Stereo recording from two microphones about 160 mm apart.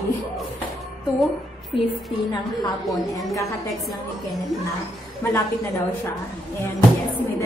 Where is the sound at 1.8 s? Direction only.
30° left (ahead or behind).